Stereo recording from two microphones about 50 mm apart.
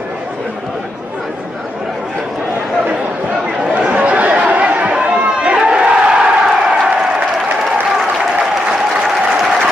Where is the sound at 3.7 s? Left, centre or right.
Right.